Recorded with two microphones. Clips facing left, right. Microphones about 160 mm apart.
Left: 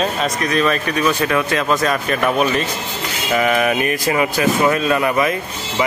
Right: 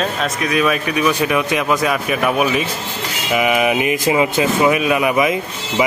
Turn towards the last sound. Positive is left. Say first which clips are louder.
# right 1 dB
turn(degrees=-15)  # may be behind; listen again after turning